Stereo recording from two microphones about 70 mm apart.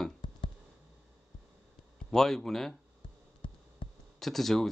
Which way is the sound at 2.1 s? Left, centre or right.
Centre.